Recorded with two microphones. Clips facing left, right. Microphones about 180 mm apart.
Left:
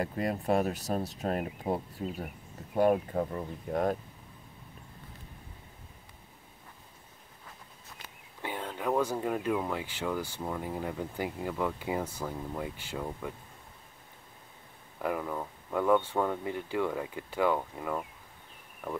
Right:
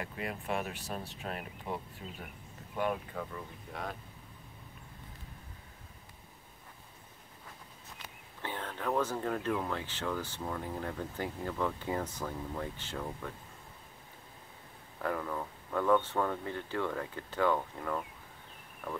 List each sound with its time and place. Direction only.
0.0 s speech: 40° left (ahead or behind)
8.4 s speech: 15° left (ahead or behind)
15.0 s speech: 10° left (ahead or behind)